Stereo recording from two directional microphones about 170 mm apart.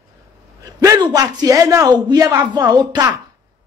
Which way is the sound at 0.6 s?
20° right (ahead or behind).